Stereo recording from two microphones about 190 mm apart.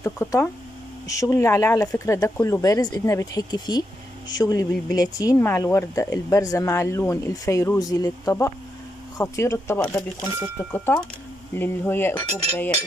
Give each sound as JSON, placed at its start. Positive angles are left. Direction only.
{"t": 0.0, "sound": "speech", "side_deg": 15}